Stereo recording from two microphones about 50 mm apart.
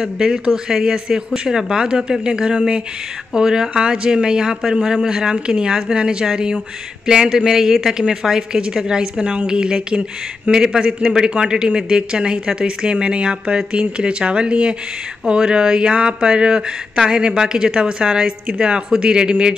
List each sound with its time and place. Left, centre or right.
0.0 s a woman's voice: centre